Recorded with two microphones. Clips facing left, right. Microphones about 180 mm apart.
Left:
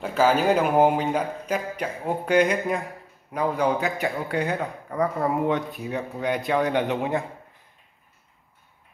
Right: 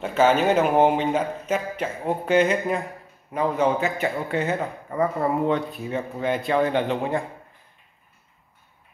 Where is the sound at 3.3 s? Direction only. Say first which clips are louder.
Right 1 dB; centre (ahead or behind).